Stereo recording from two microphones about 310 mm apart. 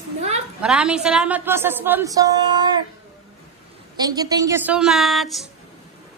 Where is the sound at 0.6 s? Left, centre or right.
Centre.